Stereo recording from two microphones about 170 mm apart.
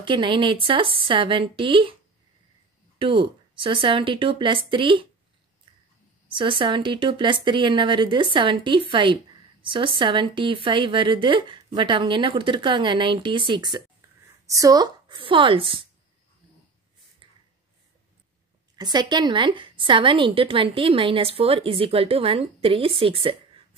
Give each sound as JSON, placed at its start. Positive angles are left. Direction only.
{"t": 0.0, "sound": "a woman's voice", "side_deg": -30}
{"t": 3.0, "sound": "a woman's voice", "side_deg": -30}
{"t": 6.2, "sound": "speech", "side_deg": -30}
{"t": 17.2, "sound": "a sound", "side_deg": -30}
{"t": 18.8, "sound": "a woman's voice", "side_deg": -25}